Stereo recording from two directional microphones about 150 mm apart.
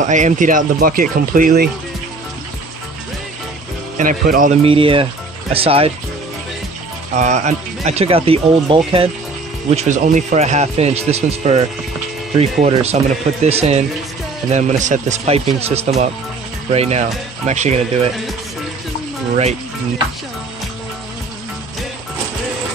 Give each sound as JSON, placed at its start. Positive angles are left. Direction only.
{"t": 0.0, "sound": "speech", "side_deg": -55}
{"t": 4.0, "sound": "speech", "side_deg": -60}
{"t": 4.6, "sound": "speech", "side_deg": -35}
{"t": 7.2, "sound": "speech", "side_deg": -50}
{"t": 9.7, "sound": "speech", "side_deg": -50}